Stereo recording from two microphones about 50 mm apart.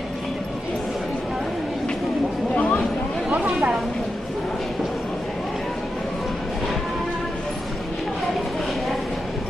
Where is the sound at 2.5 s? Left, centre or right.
Left.